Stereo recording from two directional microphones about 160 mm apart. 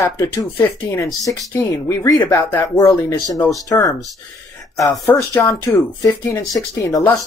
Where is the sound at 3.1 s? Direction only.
15° left (ahead or behind).